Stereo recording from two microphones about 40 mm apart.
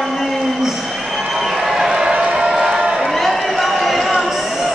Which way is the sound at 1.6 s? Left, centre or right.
Centre.